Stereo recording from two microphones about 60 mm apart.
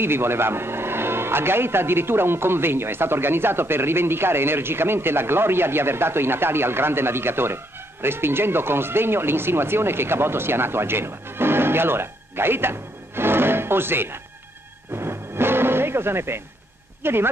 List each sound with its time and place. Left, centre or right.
0.0 s speech: right
15.0 s music: right
17.0 s speech: right